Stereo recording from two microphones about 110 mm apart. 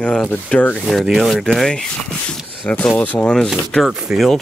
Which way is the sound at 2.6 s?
15° left (ahead or behind).